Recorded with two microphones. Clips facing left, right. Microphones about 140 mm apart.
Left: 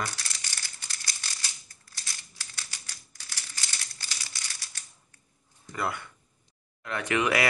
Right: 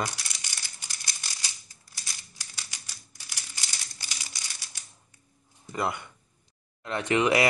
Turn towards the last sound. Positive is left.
turn(degrees=-25)  # may be behind; listen again after turning